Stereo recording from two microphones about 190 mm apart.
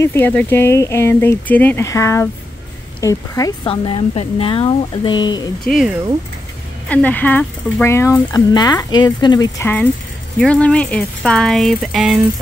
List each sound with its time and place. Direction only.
0.0 s speech: 10° left (ahead or behind)
5.7 s speech: centre (ahead or behind); by 9.7 s 20° left (ahead or behind)
10.4 s speech: 5° left (ahead or behind)